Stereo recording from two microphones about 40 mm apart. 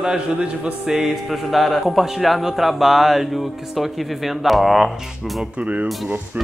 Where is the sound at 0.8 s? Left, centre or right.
Centre.